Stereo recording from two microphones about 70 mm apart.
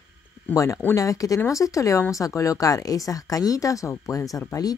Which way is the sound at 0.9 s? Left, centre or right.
Left.